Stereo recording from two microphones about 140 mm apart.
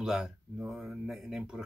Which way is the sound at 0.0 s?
5° right (ahead or behind).